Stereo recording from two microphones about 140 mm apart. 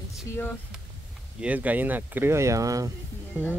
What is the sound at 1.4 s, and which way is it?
Speech, 10° right (ahead or behind).